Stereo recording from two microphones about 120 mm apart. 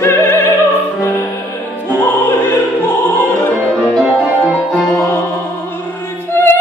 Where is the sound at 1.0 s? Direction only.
15° left (ahead or behind).